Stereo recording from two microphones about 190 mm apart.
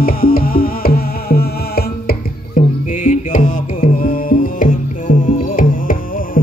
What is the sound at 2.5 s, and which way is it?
Music, 45° left (ahead or behind).